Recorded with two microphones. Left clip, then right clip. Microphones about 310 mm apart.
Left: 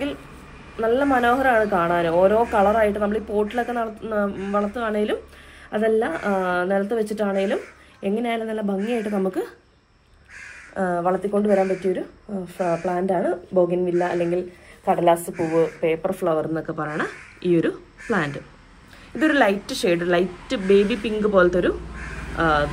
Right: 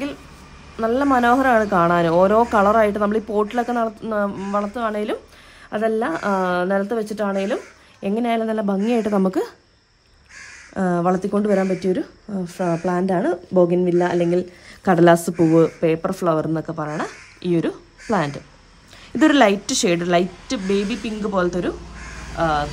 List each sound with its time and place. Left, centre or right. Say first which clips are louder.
0.7 s speech: right 1 dB; right
10.8 s speech: right 1 dB; right